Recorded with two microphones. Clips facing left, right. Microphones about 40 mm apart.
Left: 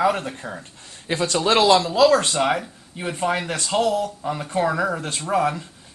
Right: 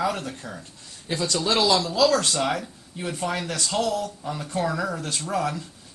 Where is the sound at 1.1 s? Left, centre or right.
Left.